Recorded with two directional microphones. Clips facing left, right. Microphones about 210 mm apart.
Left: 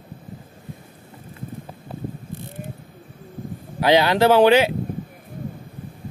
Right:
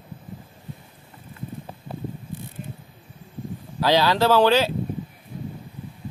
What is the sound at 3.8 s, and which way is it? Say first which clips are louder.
Speech: left 3 dB; 15° left (ahead or behind).